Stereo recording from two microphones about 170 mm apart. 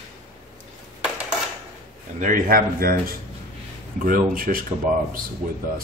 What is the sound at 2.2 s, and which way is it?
Speech, 55° right (ahead or behind).